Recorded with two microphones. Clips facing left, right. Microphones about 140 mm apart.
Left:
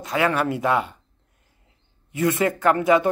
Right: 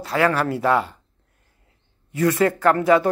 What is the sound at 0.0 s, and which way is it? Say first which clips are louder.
Speech: right 2 dB; 15° left (ahead or behind).